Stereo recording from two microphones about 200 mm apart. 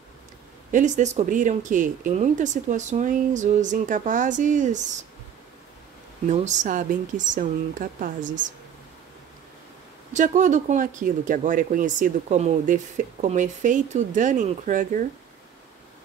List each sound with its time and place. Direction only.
0.7 s speech: 40° right (ahead or behind)
6.2 s speech: 35° right (ahead or behind)
10.1 s speech: 40° right (ahead or behind)